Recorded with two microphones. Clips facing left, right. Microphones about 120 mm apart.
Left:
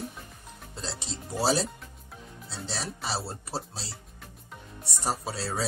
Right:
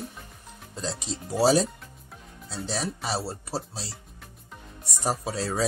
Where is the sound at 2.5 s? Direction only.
10° right (ahead or behind).